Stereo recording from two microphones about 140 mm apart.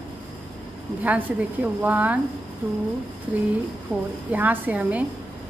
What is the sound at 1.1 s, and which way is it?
A woman's voice, 10° right (ahead or behind).